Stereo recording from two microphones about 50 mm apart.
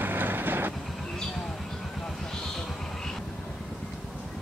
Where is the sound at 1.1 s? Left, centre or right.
Centre.